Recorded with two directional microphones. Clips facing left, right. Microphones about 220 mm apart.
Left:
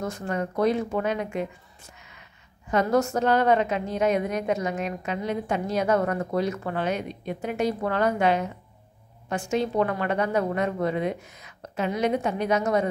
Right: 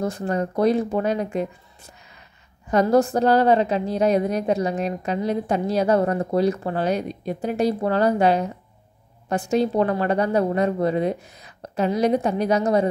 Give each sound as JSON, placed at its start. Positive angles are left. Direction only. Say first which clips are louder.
{"t": 0.0, "sound": "a woman's voice", "louder": "right 5 dB", "side_deg": -35}